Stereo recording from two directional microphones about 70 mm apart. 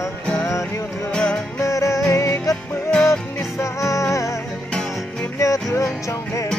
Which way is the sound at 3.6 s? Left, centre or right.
Left.